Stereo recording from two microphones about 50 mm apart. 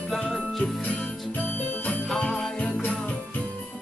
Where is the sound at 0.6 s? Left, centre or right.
Left.